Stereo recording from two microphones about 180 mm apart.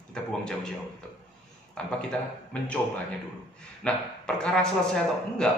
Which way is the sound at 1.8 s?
5° left (ahead or behind).